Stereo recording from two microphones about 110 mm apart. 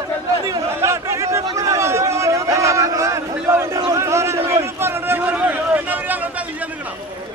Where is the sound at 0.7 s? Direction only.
25° right (ahead or behind).